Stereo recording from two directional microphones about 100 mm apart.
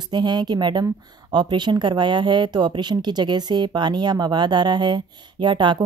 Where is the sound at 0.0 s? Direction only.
45° right (ahead or behind).